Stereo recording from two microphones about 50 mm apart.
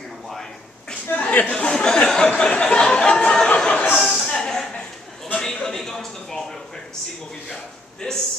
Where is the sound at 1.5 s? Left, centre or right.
Centre.